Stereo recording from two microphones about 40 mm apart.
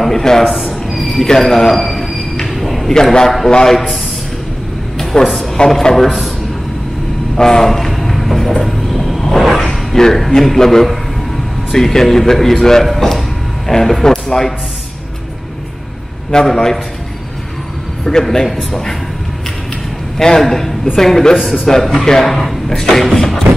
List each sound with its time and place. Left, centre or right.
0.0 s a sound: centre
0.9 s cricket: centre
2.4 s a sound: centre
2.9 s speech: centre
5.1 s a woman's voice: centre
7.3 s speech: centre
7.6 s a sound: centre
11.7 s speech: centre
16.3 s speech: centre
18.3 s speech: centre
20.2 s a man's voice: centre
20.4 s a woman's voice: centre